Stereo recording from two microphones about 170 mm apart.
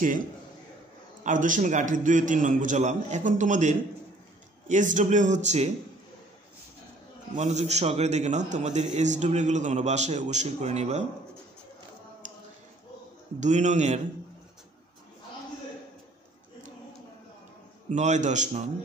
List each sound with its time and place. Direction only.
1.2 s a man's voice: 50° right (ahead or behind)
7.3 s a man's voice: 40° right (ahead or behind)
13.4 s a man's voice: 45° right (ahead or behind)
17.8 s a man's voice: 45° right (ahead or behind)